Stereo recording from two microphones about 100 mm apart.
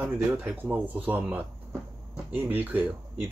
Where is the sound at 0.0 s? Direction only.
15° right (ahead or behind).